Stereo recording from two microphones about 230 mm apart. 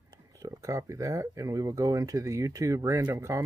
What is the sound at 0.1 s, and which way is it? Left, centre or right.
Speech, centre.